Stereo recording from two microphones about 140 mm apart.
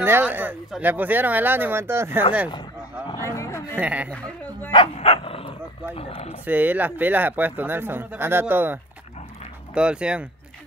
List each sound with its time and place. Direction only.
0.0 s speech: 15° right (ahead or behind)
3.2 s a sound: 20° left (ahead or behind)
3.7 s speech: 10° right (ahead or behind)
4.7 s dog: 45° left (ahead or behind)
5.9 s speech: 45° left (ahead or behind)
6.4 s speech: 10° right (ahead or behind)
9.8 s speech: 5° right (ahead or behind)